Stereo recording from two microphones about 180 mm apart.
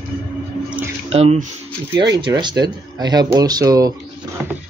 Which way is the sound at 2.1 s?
25° right (ahead or behind).